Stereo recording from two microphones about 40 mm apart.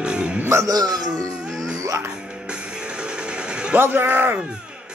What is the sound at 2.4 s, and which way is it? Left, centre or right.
Music, right.